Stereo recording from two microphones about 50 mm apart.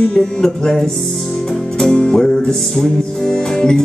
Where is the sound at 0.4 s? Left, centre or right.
Centre.